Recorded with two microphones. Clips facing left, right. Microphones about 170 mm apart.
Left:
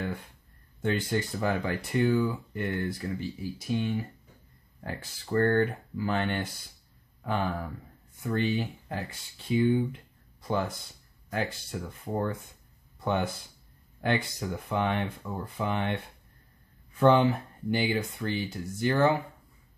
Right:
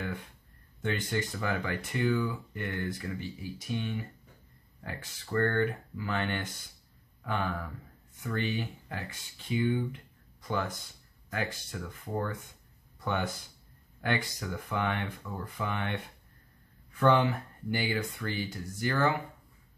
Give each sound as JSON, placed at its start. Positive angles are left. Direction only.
{"t": 0.8, "sound": "speech", "side_deg": 35}
{"t": 11.2, "sound": "speech", "side_deg": 30}
{"t": 17.0, "sound": "speech", "side_deg": 25}